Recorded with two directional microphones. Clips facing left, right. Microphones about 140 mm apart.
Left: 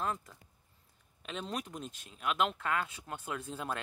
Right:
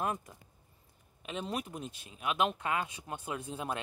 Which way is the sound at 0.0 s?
15° right (ahead or behind).